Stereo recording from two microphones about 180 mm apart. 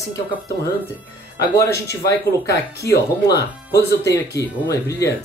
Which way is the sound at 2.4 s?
65° left (ahead or behind).